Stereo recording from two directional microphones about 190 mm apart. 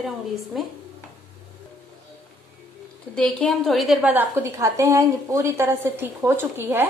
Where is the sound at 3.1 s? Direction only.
5° left (ahead or behind).